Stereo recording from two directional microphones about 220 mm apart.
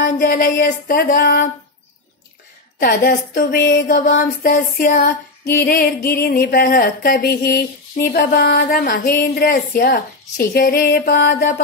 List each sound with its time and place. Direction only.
0.2 s female singing: 40° left (ahead or behind)
2.8 s speech: 40° left (ahead or behind)
4.1 s female singing: 45° left (ahead or behind)